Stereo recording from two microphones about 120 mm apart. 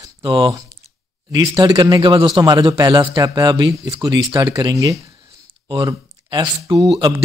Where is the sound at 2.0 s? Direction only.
45° right (ahead or behind).